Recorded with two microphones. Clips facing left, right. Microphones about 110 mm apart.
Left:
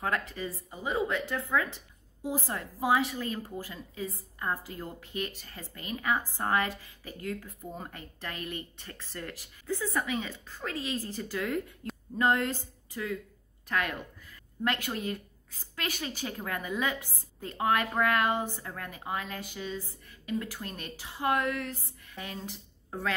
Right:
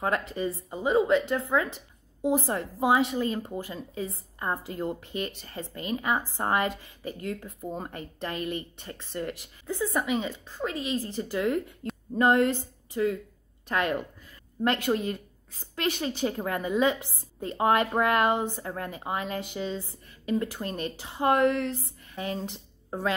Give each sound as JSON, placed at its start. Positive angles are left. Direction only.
{"t": 0.0, "sound": "a woman's voice", "side_deg": -30}